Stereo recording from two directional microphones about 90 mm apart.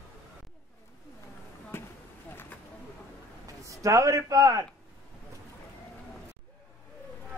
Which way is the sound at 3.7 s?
35° right (ahead or behind).